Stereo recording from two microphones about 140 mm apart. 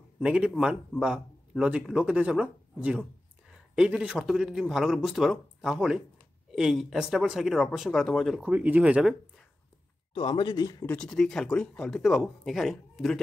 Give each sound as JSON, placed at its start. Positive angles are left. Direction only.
{"t": 0.2, "sound": "speech", "side_deg": -5}
{"t": 8.5, "sound": "speech", "side_deg": -10}
{"t": 10.1, "sound": "speech", "side_deg": 35}
{"t": 10.9, "sound": "speech", "side_deg": 5}